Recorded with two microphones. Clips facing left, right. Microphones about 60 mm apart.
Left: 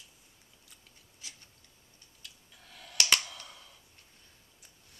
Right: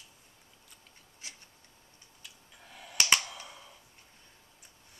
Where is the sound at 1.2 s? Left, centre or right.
Right.